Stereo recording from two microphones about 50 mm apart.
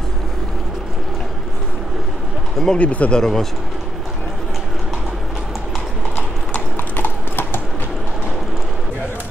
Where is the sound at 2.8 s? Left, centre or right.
Left.